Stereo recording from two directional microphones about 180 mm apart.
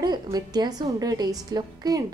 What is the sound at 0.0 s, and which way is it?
Speech, 20° right (ahead or behind).